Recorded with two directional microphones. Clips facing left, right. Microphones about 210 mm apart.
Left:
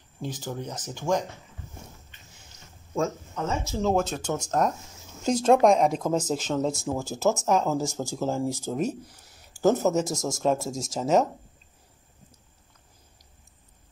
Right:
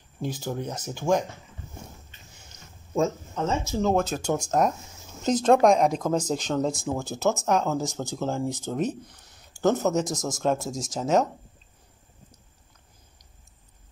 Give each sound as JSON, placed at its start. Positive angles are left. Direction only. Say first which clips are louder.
{"t": 0.2, "sound": "speech", "louder": "right 3 dB", "side_deg": -10}
{"t": 3.0, "sound": "speech", "louder": "right 3 dB", "side_deg": -25}
{"t": 3.8, "sound": "speech", "louder": "even", "side_deg": 0}
{"t": 5.2, "sound": "speech", "louder": "even", "side_deg": 10}